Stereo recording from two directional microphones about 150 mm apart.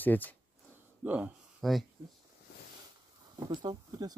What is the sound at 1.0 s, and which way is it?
Speech, 10° right (ahead or behind).